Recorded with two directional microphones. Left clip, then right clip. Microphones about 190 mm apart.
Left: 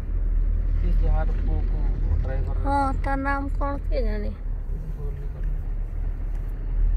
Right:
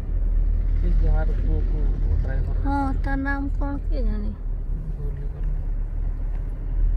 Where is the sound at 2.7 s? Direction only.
5° left (ahead or behind).